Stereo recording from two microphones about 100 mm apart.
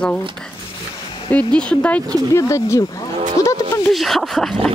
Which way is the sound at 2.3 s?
30° left (ahead or behind).